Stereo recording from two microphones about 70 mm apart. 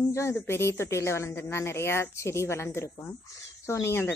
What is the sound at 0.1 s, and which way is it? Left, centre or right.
Speech, left.